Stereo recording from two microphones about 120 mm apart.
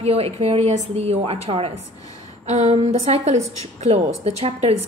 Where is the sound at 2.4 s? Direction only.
75° right (ahead or behind).